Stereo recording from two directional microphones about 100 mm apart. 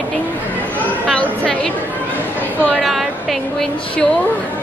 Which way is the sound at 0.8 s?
15° left (ahead or behind).